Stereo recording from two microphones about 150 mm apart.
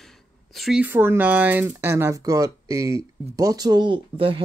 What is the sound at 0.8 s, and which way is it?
Speech, 15° right (ahead or behind).